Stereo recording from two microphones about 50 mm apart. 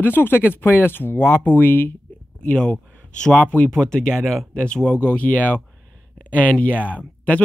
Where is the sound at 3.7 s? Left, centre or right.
Centre.